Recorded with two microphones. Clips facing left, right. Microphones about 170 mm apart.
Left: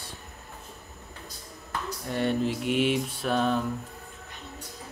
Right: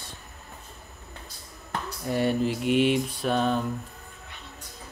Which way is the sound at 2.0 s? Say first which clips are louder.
Right 2 dB; 5° right (ahead or behind).